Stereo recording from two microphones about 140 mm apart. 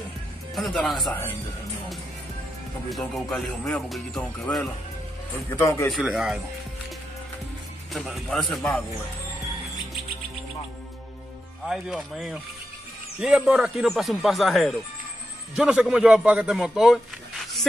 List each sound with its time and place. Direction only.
0.6 s speech: centre (ahead or behind)
2.9 s speech: centre (ahead or behind)
5.5 s a man's voice: 20° left (ahead or behind)
5.9 s speech: centre (ahead or behind)
7.9 s speech: centre (ahead or behind)
11.6 s speech: 5° right (ahead or behind)